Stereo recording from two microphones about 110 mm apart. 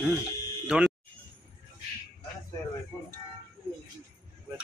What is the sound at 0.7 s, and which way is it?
Speech, 10° right (ahead or behind).